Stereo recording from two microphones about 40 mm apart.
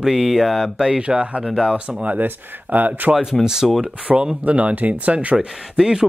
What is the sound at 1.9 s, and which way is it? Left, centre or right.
Speech, right.